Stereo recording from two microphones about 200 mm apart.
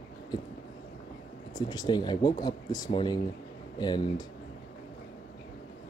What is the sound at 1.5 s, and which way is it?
Speech, 20° left (ahead or behind).